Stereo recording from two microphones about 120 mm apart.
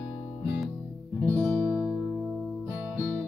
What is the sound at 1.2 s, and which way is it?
Music, 20° right (ahead or behind).